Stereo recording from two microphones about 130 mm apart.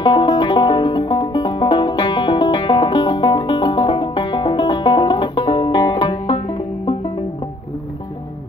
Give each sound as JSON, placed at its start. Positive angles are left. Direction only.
{"t": 0.0, "sound": "music", "side_deg": 40}